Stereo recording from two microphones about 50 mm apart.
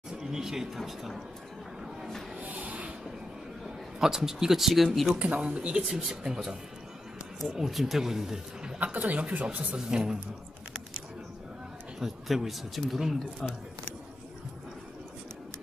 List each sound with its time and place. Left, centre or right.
0.2 s speech: centre
2.4 s a sound: right
3.6 s speech: centre
5.1 s speech: right; by 6.5 s centre
7.5 s speech: centre
8.7 s speech: right
9.8 s speech: centre
12.0 s speech: centre